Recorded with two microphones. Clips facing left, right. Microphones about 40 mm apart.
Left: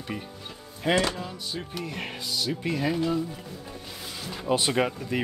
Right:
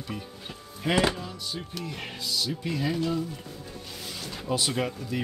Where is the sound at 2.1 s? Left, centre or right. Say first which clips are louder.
Right 1 dB; left.